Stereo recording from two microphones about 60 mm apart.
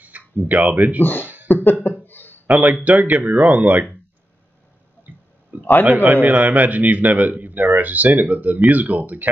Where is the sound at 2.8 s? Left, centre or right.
Right.